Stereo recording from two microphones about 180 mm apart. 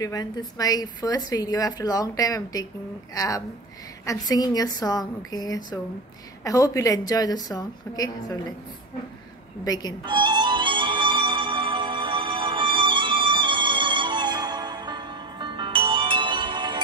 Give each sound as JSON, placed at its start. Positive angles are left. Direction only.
{"t": 0.0, "sound": "a woman's voice", "side_deg": 20}
{"t": 9.7, "sound": "a woman's voice", "side_deg": 20}
{"t": 10.0, "sound": "music", "side_deg": -25}